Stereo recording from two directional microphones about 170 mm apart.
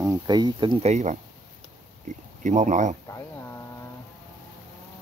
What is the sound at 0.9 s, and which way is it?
Speech, 45° right (ahead or behind).